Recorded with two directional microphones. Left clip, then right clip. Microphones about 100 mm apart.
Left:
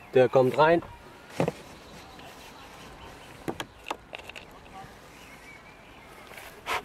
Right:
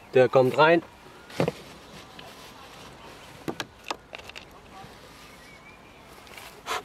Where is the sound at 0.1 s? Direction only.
25° right (ahead or behind).